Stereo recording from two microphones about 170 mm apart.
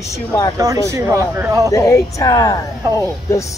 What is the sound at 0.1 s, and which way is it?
Speech, 20° left (ahead or behind).